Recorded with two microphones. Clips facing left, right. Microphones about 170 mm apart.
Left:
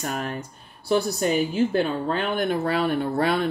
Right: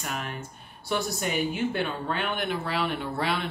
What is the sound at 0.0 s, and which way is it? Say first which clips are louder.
A woman's voice: left 5 dB; 40° left (ahead or behind).